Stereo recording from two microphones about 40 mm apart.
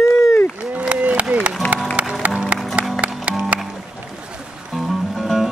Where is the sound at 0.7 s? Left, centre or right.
Right.